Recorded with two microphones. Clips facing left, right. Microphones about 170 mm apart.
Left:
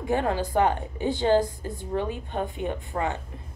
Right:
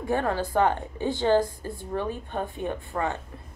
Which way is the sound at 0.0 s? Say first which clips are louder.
Left 1 dB; 15° left (ahead or behind).